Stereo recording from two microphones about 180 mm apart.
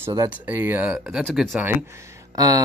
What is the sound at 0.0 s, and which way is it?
Speech, 20° right (ahead or behind).